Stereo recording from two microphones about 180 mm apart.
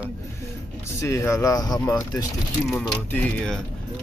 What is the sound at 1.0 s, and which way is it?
Speech, 15° left (ahead or behind).